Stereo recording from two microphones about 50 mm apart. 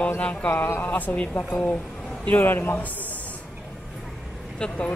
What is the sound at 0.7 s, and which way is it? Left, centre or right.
A man's voice, left.